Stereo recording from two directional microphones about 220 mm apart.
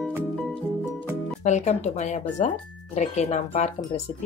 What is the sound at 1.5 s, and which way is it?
Speech, 30° left (ahead or behind).